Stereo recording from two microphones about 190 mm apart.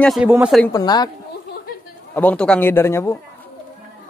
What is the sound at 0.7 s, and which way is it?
Speech, 20° left (ahead or behind).